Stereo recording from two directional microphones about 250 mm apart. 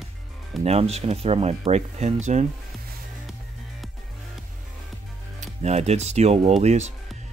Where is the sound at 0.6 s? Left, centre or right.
Right.